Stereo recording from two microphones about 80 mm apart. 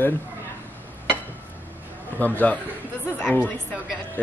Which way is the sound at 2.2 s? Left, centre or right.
Centre.